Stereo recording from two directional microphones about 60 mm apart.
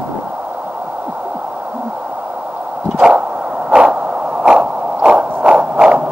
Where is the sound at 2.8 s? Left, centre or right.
Centre.